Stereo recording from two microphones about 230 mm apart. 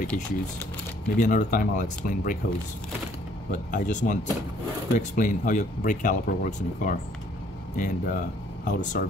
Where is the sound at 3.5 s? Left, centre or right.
Left.